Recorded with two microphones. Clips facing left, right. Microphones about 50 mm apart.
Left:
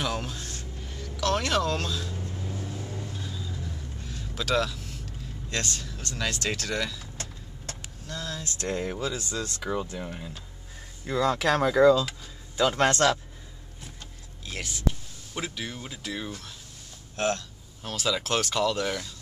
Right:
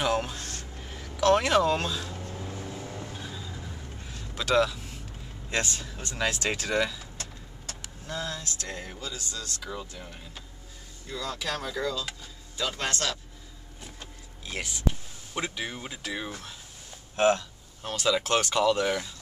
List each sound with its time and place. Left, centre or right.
0.0 s speech: centre
2.3 s vehicle: right; by 4.9 s centre
5.5 s speech: centre
8.1 s speech: centre
8.5 s speech: left
9.1 s speech: centre
9.6 s speech: left
11.1 s speech: left
14.4 s speech: centre
17.2 s a sound: centre
17.9 s speech: centre